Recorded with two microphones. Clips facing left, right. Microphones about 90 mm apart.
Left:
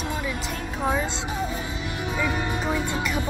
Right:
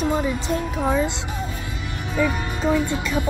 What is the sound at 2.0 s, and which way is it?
Music, 15° left (ahead or behind).